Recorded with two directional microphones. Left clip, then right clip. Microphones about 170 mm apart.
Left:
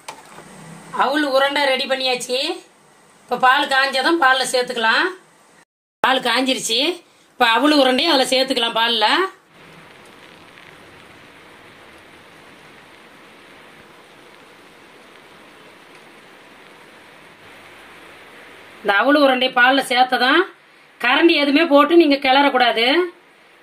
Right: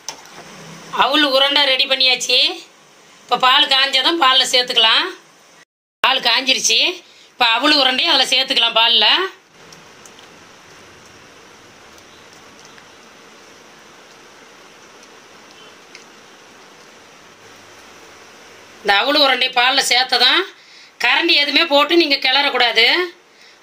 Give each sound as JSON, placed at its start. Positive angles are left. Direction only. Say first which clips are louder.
{"t": 0.9, "sound": "a woman's voice", "louder": "right 3 dB", "side_deg": 40}
{"t": 6.0, "sound": "a woman's voice", "louder": "right 2 dB", "side_deg": 60}
{"t": 18.9, "sound": "a woman's voice", "louder": "right 1 dB", "side_deg": 45}